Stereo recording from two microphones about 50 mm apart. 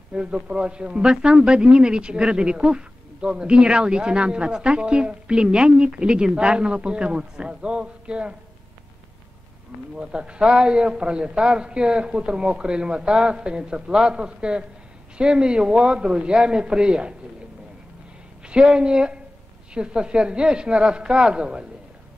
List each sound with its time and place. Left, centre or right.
0.1 s a man's voice: right
9.9 s a man's voice: right
18.5 s a man's voice: centre